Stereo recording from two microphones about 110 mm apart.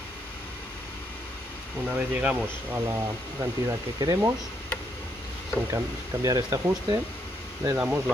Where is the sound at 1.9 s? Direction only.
10° right (ahead or behind).